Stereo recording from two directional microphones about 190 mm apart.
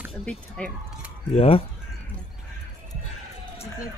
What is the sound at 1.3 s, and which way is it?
Speech, 30° left (ahead or behind).